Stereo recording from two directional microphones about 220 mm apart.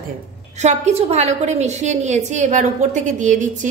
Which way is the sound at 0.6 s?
30° right (ahead or behind).